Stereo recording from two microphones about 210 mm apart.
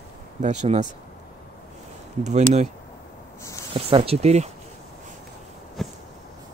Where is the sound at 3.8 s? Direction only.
25° right (ahead or behind).